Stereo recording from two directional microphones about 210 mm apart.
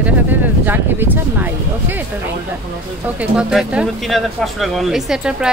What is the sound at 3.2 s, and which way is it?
Speech, 5° right (ahead or behind).